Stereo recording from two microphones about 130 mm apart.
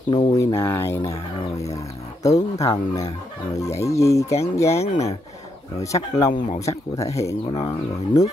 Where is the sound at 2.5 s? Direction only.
25° left (ahead or behind).